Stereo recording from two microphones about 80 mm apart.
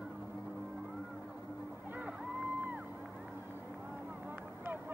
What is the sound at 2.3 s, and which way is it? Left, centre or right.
Music, centre.